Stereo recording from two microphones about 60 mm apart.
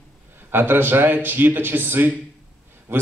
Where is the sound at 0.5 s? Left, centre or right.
Right.